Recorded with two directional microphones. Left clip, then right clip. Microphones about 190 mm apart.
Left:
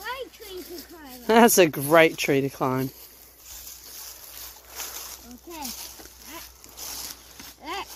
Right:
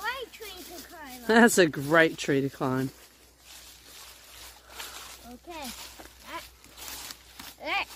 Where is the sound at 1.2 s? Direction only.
5° right (ahead or behind).